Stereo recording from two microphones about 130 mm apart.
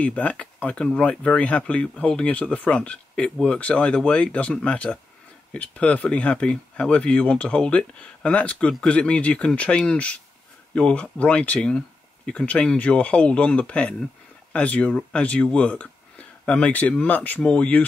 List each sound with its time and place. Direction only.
0.0 s speech: 10° left (ahead or behind)